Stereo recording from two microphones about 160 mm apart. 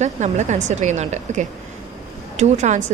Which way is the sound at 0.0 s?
45° right (ahead or behind).